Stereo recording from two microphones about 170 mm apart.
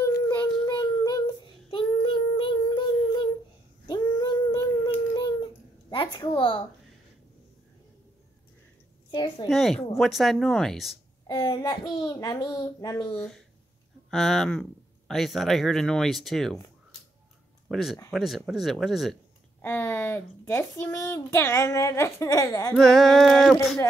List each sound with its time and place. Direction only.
0.7 s child singing: 25° left (ahead or behind)
3.8 s a sound: 25° left (ahead or behind)
5.1 s telephone: 25° left (ahead or behind)
9.1 s a child's voice: 25° left (ahead or behind)
9.5 s speech: centre (ahead or behind)
11.2 s a child's voice: 20° left (ahead or behind)
13.1 s speech: 5° left (ahead or behind)
17.6 s speech: centre (ahead or behind)
19.6 s a child's voice: 15° left (ahead or behind)
22.8 s speech: centre (ahead or behind)